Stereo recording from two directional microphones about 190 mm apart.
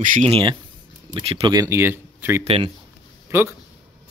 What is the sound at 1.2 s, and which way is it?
Speech, 30° right (ahead or behind).